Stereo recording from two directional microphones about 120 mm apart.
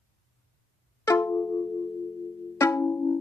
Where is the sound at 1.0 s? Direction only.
25° left (ahead or behind).